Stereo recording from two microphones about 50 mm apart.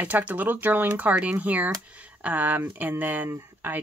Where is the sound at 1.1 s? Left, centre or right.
Right.